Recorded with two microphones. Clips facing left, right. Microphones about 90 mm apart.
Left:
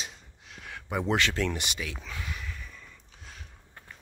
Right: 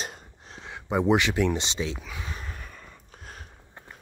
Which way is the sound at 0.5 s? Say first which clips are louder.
Right 5 dB; 25° right (ahead or behind).